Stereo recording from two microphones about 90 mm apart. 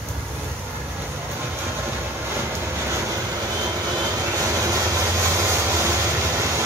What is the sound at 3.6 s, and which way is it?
Vehicle, 45° right (ahead or behind).